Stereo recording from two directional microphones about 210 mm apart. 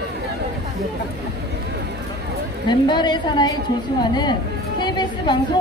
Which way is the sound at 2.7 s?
20° left (ahead or behind).